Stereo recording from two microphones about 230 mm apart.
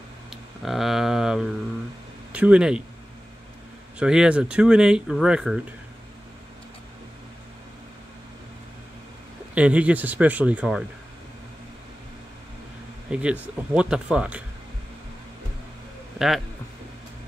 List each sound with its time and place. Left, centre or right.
0.3 s a sound: centre
2.3 s speech: centre
4.0 s speech: centre
9.6 s speech: centre
13.1 s speech: centre